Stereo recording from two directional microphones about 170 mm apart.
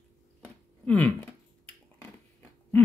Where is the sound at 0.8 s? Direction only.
10° left (ahead or behind).